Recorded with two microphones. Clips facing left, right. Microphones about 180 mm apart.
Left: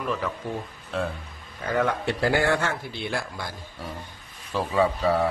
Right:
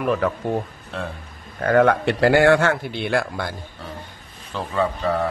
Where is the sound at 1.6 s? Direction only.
65° right (ahead or behind).